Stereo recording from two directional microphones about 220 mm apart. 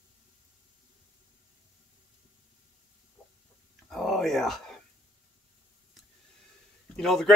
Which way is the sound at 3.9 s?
Centre (ahead or behind).